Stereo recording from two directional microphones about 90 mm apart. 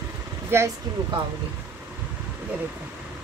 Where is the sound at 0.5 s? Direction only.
25° right (ahead or behind).